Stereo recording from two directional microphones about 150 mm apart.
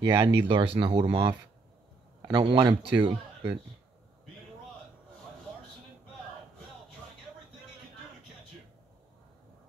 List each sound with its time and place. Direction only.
0.0 s speech: 30° right (ahead or behind)